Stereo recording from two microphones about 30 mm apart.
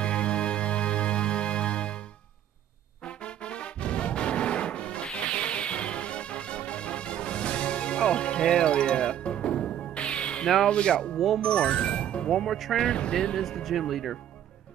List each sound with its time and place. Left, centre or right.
0.0 s music: left
3.4 s music: left
10.7 s speech: left
11.1 s speech: centre
11.4 s music: left
12.7 s speech: centre
13.1 s speech: left
13.4 s speech: centre